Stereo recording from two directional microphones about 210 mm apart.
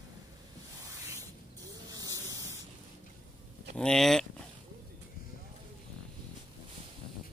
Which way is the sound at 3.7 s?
5° left (ahead or behind).